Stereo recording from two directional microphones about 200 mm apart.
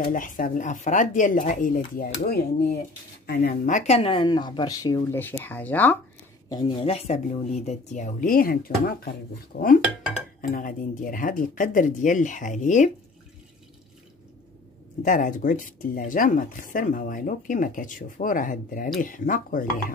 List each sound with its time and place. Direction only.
0.0 s speech: 45° left (ahead or behind)
3.6 s speech: 35° left (ahead or behind); by 5.9 s 10° left (ahead or behind)
6.5 s speech: 25° left (ahead or behind); by 9.7 s 55° left (ahead or behind)
10.1 s speech: 45° left (ahead or behind)
15.0 s speech: 40° left (ahead or behind)